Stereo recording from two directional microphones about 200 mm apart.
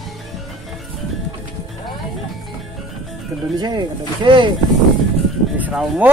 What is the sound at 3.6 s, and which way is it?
Speech, 20° right (ahead or behind).